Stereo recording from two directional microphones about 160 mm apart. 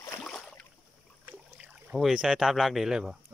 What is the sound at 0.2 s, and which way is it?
Boat, 5° left (ahead or behind).